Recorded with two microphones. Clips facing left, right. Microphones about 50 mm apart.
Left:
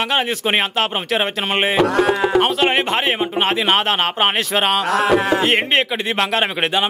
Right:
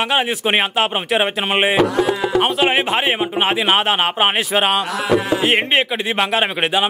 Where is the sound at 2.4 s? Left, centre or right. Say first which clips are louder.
Even; centre.